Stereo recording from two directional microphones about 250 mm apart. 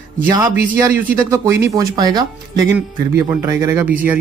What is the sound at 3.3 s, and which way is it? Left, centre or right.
Speech, centre.